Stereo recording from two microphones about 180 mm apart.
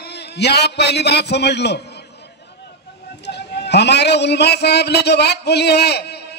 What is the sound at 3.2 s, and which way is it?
A man's voice, 70° left (ahead or behind).